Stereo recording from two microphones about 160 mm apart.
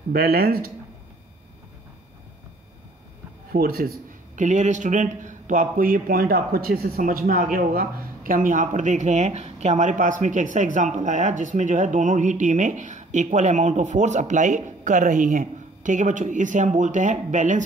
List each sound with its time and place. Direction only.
0.1 s speech: 65° right (ahead or behind)
3.5 s speech: 65° right (ahead or behind)